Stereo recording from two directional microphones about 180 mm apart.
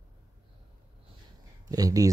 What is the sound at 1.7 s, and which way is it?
Speech, 20° right (ahead or behind).